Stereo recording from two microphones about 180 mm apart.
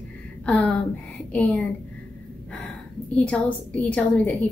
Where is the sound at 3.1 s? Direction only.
5° left (ahead or behind).